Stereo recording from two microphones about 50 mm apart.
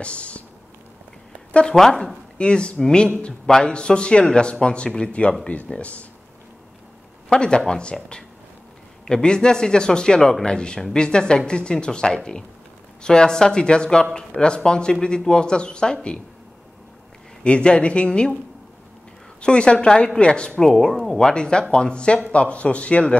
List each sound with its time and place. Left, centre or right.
0.0 s speech: left
1.5 s speech: centre
1.8 s speech: centre
2.3 s speech: centre
7.2 s speech: centre
17.4 s speech: left
19.4 s speech: centre
20.6 s speech: centre; by 23.1 s left